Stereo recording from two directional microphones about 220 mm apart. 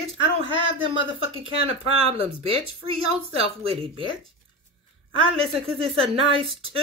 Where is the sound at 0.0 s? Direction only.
25° right (ahead or behind).